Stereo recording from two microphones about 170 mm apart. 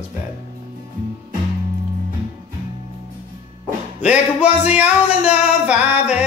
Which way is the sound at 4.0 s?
5° right (ahead or behind).